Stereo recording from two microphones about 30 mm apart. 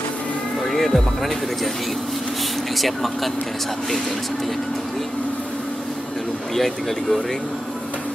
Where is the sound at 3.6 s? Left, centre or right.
Centre.